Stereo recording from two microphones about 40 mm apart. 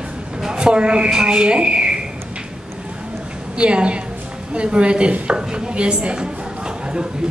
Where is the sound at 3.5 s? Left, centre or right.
Right.